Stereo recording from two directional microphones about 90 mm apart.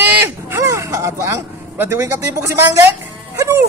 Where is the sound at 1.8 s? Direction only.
30° right (ahead or behind).